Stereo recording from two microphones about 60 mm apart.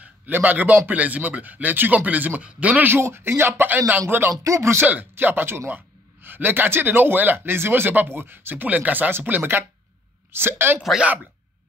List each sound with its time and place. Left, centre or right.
0.0 s a man's voice: right
2.9 s speech: right
4.3 s music: right
5.1 s speech: right
11.0 s a man's voice: right